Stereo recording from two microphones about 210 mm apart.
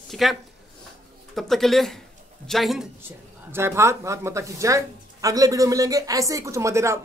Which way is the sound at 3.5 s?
10° right (ahead or behind).